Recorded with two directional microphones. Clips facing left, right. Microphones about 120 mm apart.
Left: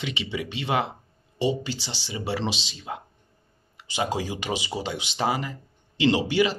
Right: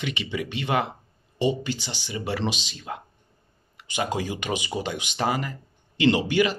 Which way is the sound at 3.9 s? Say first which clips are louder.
Even; 30° left (ahead or behind).